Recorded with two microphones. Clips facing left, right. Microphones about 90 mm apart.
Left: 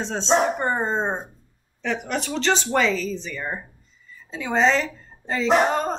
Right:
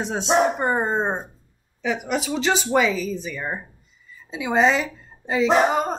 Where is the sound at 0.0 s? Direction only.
10° right (ahead or behind).